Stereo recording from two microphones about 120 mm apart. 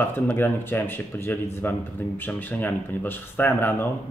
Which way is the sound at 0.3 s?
15° left (ahead or behind).